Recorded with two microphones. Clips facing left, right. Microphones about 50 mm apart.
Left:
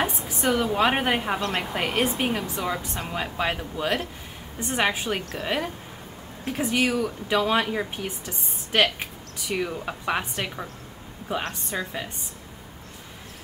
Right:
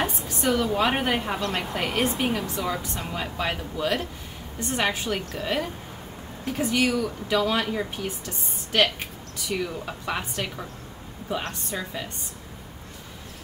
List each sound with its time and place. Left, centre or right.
0.0 s a woman's voice: centre